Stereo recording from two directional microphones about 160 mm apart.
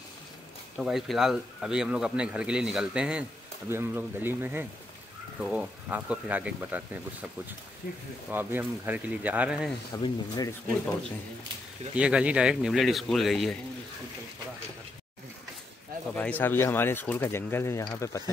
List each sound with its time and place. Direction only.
0.7 s a man's voice: centre (ahead or behind)
7.8 s speech: 75° left (ahead or behind)
8.3 s speech: 10° right (ahead or behind)
10.0 s a man's voice: 25° left (ahead or behind)
11.9 s a man's voice: 5° right (ahead or behind)
16.2 s a man's voice: 10° left (ahead or behind)